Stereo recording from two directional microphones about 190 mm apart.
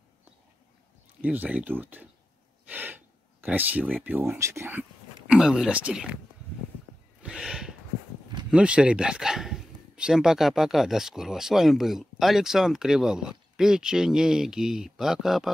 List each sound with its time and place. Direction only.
1.2 s speech: 10° right (ahead or behind)
7.2 s a sound: 5° right (ahead or behind)
8.5 s speech: 5° right (ahead or behind)